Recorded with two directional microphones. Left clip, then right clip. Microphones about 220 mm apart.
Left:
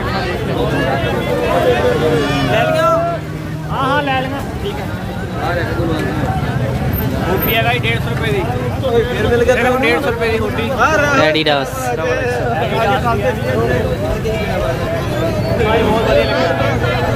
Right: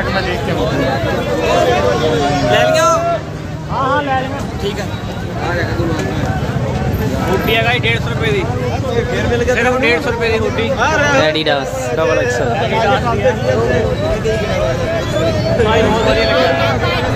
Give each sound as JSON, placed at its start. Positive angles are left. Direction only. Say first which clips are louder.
{"t": 2.5, "sound": "music", "louder": "right 2 dB", "side_deg": -40}
{"t": 7.4, "sound": "speech", "louder": "right 2 dB", "side_deg": 5}
{"t": 9.6, "sound": "speech", "louder": "even", "side_deg": 15}
{"t": 10.8, "sound": "speech", "louder": "left 2 dB", "side_deg": 35}
{"t": 11.1, "sound": "speech", "louder": "even", "side_deg": 5}